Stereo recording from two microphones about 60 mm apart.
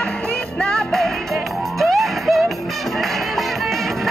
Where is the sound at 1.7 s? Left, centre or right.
Centre.